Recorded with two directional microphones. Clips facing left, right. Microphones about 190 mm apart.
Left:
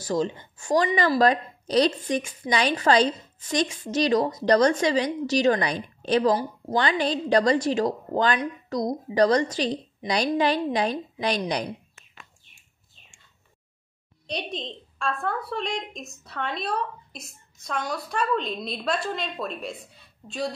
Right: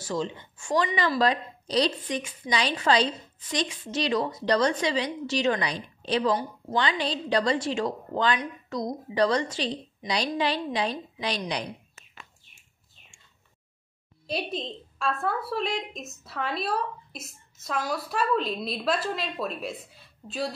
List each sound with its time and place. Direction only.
0.0 s a woman's voice: 40° left (ahead or behind)
14.2 s a woman's voice: 5° right (ahead or behind)